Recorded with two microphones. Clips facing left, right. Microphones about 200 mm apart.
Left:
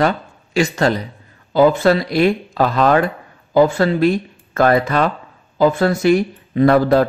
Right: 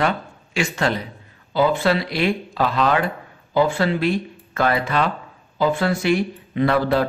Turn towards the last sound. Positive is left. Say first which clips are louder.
# left 6 dB
turn(degrees=45)  # may be behind; listen again after turning